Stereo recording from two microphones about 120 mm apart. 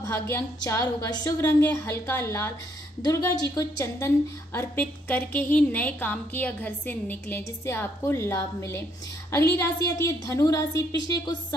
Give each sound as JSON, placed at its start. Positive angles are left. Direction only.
{"t": 0.0, "sound": "a woman's voice", "side_deg": 25}
{"t": 1.4, "sound": "a woman's voice", "side_deg": 20}
{"t": 4.6, "sound": "a woman's voice", "side_deg": 15}